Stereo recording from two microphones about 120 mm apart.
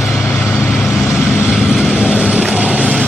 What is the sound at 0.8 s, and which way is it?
Vehicle, centre (ahead or behind).